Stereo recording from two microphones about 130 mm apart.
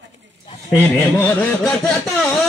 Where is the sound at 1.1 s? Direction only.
10° left (ahead or behind).